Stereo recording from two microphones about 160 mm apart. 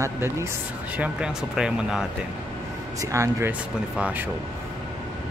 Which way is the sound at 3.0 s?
20° right (ahead or behind).